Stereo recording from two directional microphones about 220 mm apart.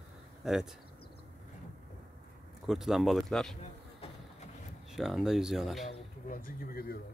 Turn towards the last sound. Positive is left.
turn(degrees=40)  # may be behind; listen again after turning